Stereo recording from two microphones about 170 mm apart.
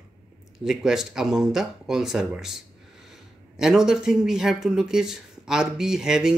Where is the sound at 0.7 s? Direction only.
5° right (ahead or behind).